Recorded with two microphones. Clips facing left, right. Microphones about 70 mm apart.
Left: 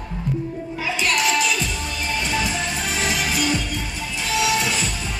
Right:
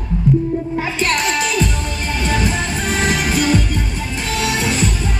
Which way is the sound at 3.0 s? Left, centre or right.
Right.